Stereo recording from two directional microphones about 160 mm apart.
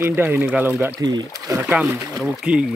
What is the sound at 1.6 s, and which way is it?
Speech, 10° right (ahead or behind).